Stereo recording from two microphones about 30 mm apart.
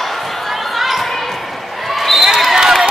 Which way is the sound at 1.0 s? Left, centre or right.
Centre.